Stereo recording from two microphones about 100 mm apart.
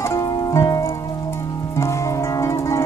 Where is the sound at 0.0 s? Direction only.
25° left (ahead or behind).